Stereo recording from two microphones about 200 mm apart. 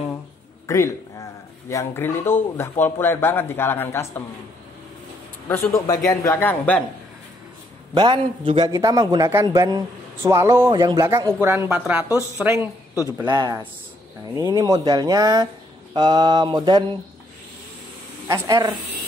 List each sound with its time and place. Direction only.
0.7 s a man's voice: 15° left (ahead or behind)
5.5 s speech: 15° left (ahead or behind)
7.9 s a man's voice: 25° right (ahead or behind); by 12.0 s 10° right (ahead or behind)
13.3 s speech: 20° right (ahead or behind)
18.3 s speech: 20° right (ahead or behind)